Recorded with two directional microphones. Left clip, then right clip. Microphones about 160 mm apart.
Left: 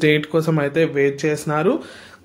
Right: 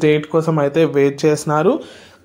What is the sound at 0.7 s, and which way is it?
Speech, 20° right (ahead or behind).